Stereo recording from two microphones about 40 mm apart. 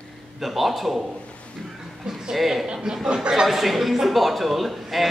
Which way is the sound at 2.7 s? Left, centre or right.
Centre.